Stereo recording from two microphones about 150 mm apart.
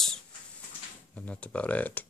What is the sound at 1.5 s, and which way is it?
Speech, 10° left (ahead or behind).